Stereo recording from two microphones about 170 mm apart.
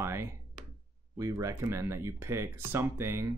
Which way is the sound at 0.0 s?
15° right (ahead or behind).